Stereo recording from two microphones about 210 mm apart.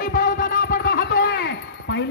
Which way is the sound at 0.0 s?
40° left (ahead or behind).